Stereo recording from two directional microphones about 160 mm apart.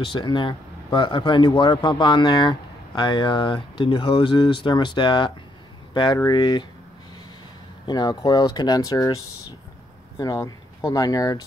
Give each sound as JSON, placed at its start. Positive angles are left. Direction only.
{"t": 0.0, "sound": "speech", "side_deg": 30}
{"t": 7.8, "sound": "speech", "side_deg": 25}